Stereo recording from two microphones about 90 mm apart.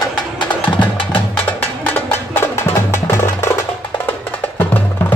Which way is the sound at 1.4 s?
20° left (ahead or behind).